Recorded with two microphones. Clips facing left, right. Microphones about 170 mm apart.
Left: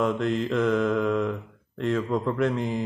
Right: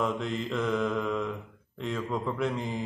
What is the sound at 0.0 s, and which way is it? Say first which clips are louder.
Speech: left 6 dB; centre (ahead or behind).